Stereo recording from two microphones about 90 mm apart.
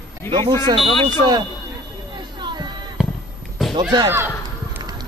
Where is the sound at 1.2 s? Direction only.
55° right (ahead or behind).